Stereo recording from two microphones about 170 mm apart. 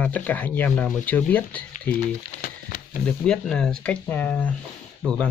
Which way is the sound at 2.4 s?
60° left (ahead or behind).